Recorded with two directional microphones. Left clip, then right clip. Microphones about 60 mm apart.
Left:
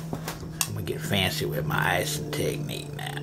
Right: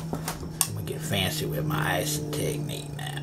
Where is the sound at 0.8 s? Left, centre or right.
Left.